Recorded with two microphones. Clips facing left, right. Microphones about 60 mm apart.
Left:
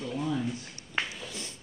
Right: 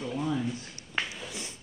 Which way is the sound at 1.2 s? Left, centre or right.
Centre.